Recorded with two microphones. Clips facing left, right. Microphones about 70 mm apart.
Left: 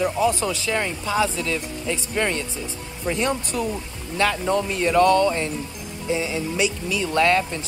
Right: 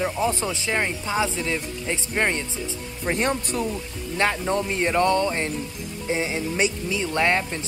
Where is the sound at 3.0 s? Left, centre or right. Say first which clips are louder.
Even; right.